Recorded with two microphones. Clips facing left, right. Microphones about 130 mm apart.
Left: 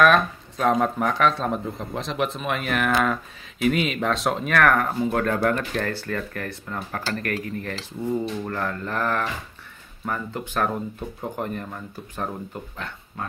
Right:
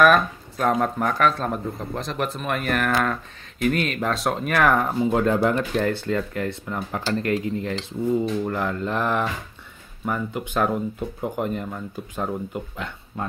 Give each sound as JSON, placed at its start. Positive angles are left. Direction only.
{"t": 0.0, "sound": "speech", "side_deg": -5}
{"t": 4.6, "sound": "speech", "side_deg": -15}